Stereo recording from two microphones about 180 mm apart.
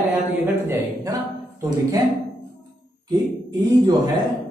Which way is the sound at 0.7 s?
20° right (ahead or behind).